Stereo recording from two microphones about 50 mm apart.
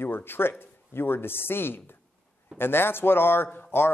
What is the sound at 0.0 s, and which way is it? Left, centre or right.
Speech, left.